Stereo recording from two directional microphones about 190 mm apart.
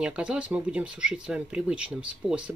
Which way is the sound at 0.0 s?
5° right (ahead or behind).